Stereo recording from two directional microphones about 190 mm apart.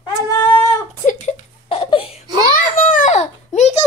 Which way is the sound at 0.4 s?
10° left (ahead or behind).